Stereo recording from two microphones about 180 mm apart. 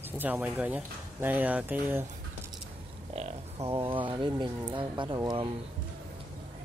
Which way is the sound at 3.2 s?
35° right (ahead or behind).